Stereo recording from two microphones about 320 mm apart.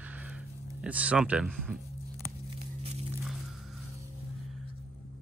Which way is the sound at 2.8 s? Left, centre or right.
Centre.